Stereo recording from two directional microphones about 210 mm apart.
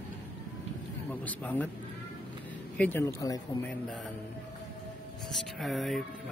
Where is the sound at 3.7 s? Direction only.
Centre (ahead or behind).